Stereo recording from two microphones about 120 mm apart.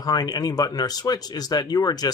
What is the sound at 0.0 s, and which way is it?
Speech, 35° left (ahead or behind).